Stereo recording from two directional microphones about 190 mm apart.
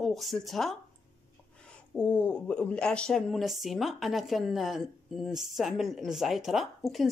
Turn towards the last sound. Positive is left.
turn(degrees=0)  # may be behind; listen again after turning